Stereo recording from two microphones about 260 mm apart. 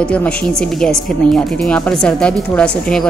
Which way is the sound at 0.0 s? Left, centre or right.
Centre.